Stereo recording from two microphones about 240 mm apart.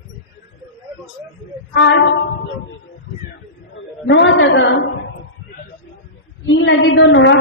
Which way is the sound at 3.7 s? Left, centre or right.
Left.